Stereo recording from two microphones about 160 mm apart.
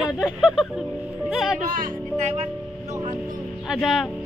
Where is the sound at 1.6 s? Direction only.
55° right (ahead or behind).